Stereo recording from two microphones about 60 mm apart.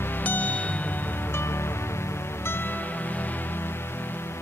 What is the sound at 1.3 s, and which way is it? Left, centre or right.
Music, left.